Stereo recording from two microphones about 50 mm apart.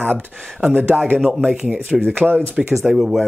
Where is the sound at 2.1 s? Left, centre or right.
Right.